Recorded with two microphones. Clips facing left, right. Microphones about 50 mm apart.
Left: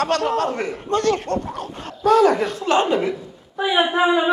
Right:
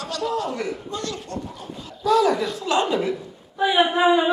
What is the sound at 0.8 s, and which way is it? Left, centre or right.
Speech, left.